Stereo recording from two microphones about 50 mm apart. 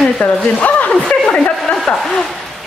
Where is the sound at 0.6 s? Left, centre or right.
Left.